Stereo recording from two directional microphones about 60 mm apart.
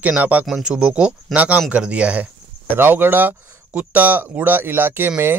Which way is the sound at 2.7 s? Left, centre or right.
Right.